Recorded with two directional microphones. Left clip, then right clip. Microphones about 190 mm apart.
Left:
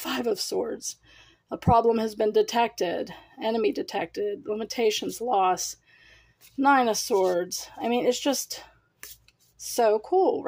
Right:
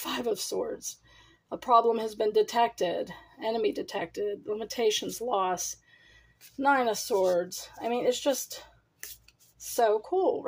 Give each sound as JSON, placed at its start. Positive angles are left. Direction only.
{"t": 0.0, "sound": "speech", "side_deg": 25}
{"t": 9.8, "sound": "speech", "side_deg": 30}